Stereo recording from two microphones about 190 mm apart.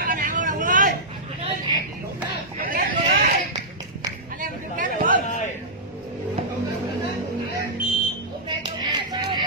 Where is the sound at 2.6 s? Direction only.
45° right (ahead or behind).